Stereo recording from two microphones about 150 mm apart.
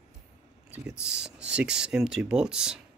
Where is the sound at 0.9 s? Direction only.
5° right (ahead or behind).